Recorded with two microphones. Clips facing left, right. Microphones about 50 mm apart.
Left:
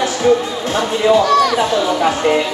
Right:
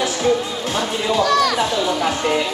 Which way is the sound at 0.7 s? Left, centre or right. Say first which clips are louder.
Left 7 dB; left.